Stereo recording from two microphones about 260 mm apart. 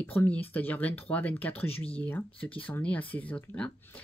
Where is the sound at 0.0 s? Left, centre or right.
Centre.